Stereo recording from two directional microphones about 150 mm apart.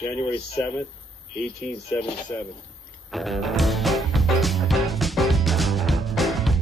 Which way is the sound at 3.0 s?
Centre (ahead or behind).